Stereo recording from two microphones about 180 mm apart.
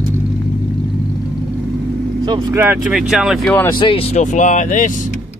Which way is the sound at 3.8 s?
30° left (ahead or behind).